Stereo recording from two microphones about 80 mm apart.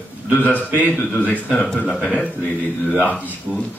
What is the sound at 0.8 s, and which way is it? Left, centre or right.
A man's voice, left.